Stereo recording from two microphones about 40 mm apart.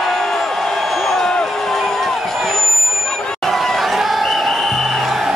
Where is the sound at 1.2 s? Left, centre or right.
Left.